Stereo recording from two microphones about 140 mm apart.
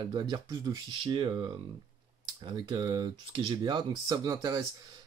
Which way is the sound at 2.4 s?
30° right (ahead or behind).